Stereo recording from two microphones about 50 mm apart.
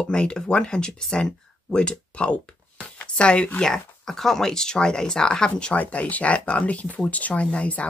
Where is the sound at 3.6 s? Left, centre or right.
Centre.